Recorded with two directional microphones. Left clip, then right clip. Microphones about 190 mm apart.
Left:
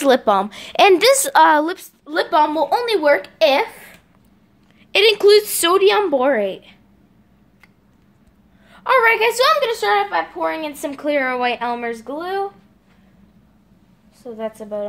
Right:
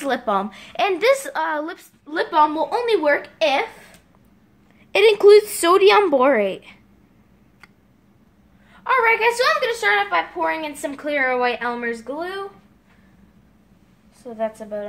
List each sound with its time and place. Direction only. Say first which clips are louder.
0.0 s a woman's voice: left 7 dB; 45° left (ahead or behind)
4.9 s a woman's voice: even; 10° right (ahead or behind)
8.6 s a woman's voice: left 3 dB; 55° left (ahead or behind); by 12.4 s 30° left (ahead or behind)
14.4 s a woman's voice: even; 30° left (ahead or behind)